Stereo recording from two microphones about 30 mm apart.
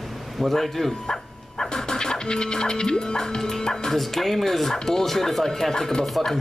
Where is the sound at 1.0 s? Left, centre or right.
Left.